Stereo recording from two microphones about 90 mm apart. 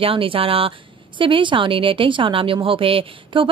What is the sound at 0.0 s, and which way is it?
A woman's voice, 85° right.